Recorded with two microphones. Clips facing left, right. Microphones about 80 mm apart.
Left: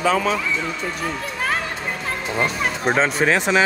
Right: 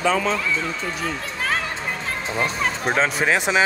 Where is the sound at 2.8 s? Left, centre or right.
Centre.